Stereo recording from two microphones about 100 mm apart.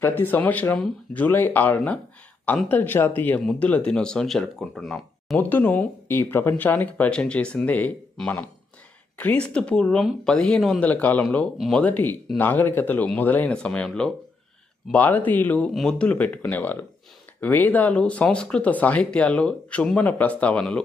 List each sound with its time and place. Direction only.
0.0 s speech: 20° left (ahead or behind); by 5.4 s 5° left (ahead or behind)
5.4 s speech: 20° left (ahead or behind)
11.5 s speech: centre (ahead or behind)
11.8 s speech: 15° left (ahead or behind)
14.9 s speech: 15° left (ahead or behind)